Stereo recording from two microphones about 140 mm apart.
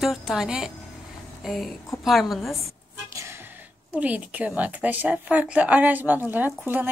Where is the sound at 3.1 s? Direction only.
20° right (ahead or behind).